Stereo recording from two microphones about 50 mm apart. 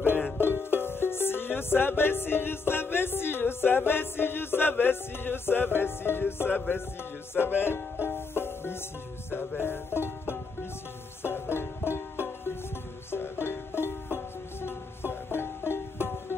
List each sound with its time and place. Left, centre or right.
0.4 s music: left